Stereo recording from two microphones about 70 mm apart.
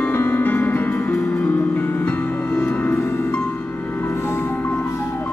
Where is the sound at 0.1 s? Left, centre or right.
Left.